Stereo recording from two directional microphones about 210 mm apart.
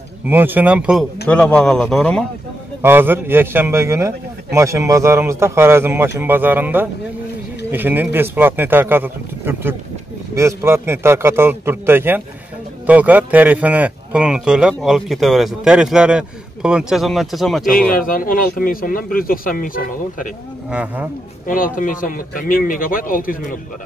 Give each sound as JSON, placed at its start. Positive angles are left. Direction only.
{"t": 0.3, "sound": "speech", "side_deg": -10}
{"t": 2.8, "sound": "a man's voice", "side_deg": -10}
{"t": 17.8, "sound": "speech", "side_deg": 40}
{"t": 20.7, "sound": "a man's voice", "side_deg": -10}
{"t": 21.5, "sound": "a man's voice", "side_deg": 40}